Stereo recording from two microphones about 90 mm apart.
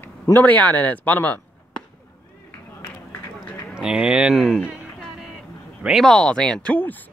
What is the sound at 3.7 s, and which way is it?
Speech, 10° right (ahead or behind).